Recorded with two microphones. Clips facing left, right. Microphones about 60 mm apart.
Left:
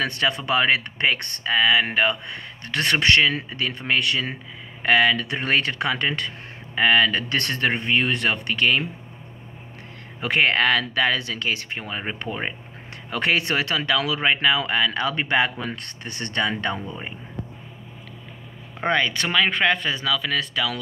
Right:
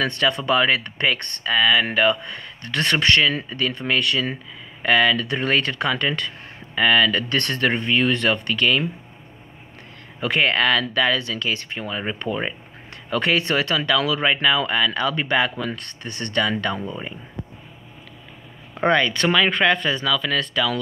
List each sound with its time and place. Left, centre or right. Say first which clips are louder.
0.2 s speech: right 2 dB; left
5.2 s speech: right 1 dB; left
10.2 s speech: even; left
18.9 s speech: right 4 dB; centre